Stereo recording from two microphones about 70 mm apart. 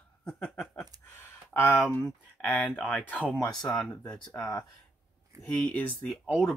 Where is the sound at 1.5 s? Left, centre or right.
Left.